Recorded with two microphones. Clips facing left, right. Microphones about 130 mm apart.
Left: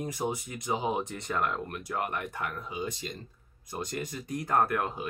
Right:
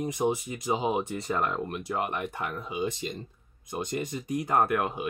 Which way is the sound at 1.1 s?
Centre (ahead or behind).